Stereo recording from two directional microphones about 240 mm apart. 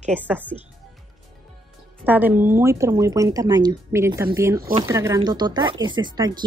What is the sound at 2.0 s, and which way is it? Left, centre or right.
Speech, centre.